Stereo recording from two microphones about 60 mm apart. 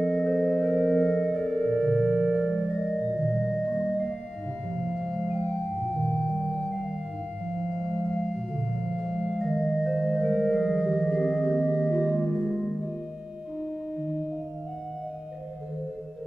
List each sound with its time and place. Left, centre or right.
0.0 s music: centre
1.1 s music: centre
4.8 s organ: centre
5.9 s music: left
8.9 s organ: centre
10.2 s organ: centre
11.0 s singing bowl: centre